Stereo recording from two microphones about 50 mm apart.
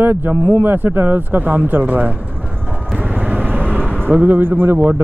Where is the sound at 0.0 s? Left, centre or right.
Right.